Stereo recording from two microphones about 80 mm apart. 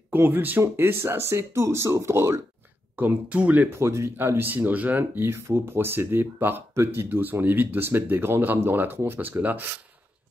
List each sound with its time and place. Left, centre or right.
0.1 s speech: right
3.0 s speech: right
3.7 s speech: right